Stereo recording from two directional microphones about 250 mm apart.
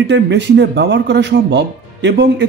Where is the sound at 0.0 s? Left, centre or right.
Right.